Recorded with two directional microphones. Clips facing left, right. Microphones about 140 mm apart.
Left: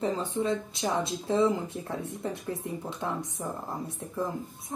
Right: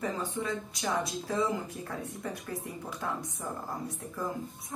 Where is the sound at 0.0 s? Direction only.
25° left (ahead or behind).